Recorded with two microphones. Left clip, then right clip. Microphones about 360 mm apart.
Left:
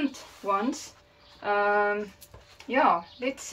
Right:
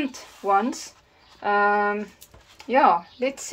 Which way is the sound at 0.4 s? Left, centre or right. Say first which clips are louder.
Right 6 dB; centre.